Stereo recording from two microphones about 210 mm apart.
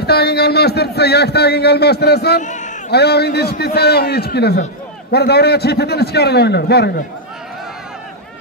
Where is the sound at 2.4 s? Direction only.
35° left (ahead or behind).